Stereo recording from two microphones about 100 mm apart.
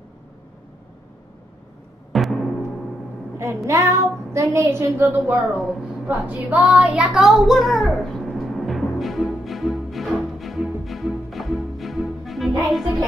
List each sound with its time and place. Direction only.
2.1 s timpani: centre (ahead or behind)
3.3 s a woman's voice: 30° right (ahead or behind)
5.1 s a woman's voice: 20° right (ahead or behind)
5.6 s speech: centre (ahead or behind)
6.0 s speech: 15° right (ahead or behind); by 8.8 s centre (ahead or behind)
9.0 s music: centre (ahead or behind)
12.6 s speech: centre (ahead or behind)